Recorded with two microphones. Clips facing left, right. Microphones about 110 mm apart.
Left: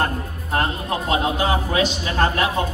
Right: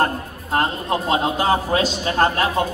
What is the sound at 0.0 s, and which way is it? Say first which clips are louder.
A man's voice: right 3 dB; 30° right (ahead or behind).